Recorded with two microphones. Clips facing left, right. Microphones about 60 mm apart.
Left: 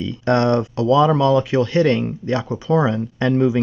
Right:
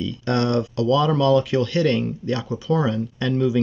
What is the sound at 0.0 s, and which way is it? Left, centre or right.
Speech, left.